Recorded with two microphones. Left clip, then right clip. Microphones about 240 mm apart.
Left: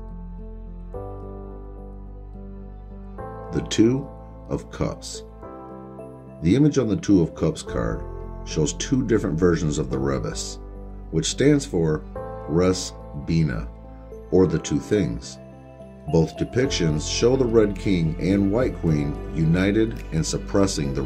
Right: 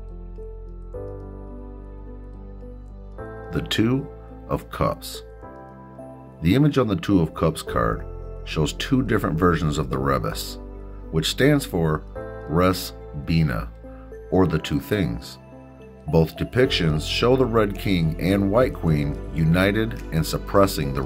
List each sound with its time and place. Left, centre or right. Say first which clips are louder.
3.5 s speech: left 2 dB; right
6.4 s speech: even; right